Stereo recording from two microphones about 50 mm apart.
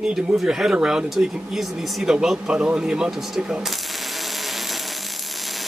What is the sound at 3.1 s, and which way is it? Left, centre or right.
Speech, centre.